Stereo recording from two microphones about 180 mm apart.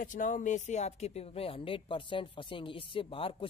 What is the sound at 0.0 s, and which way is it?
Speech, 45° left (ahead or behind).